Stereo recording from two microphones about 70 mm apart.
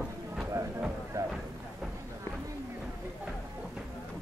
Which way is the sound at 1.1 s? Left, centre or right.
Right.